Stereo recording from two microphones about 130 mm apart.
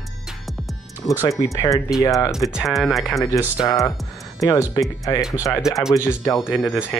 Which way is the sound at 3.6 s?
25° left (ahead or behind).